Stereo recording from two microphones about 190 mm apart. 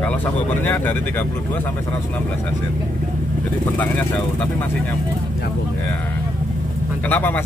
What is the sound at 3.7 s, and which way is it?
Speech, 10° left (ahead or behind).